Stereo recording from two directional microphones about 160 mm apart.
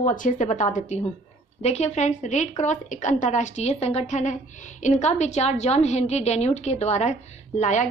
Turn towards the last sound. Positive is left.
turn(degrees=45)  # may be behind; listen again after turning